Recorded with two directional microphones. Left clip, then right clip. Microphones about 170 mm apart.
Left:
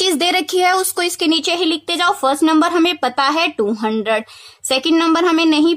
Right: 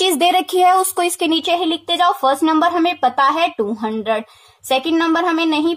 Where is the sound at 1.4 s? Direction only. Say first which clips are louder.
Even; 20° left (ahead or behind).